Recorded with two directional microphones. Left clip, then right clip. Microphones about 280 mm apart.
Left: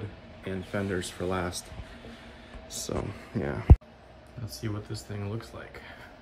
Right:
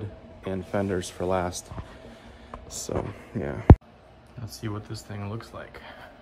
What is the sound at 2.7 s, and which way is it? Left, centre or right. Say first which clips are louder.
Speech: right 3 dB; centre.